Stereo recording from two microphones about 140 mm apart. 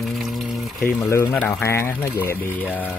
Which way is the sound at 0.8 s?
20° left (ahead or behind).